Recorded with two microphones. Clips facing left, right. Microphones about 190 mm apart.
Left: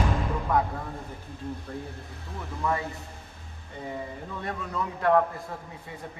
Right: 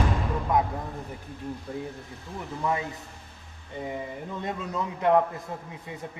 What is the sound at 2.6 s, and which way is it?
A man's voice, 20° right (ahead or behind).